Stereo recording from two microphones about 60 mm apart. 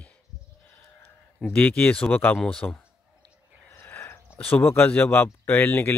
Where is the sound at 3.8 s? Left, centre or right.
Left.